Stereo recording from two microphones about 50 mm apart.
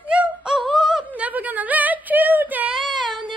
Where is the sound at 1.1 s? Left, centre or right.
Right.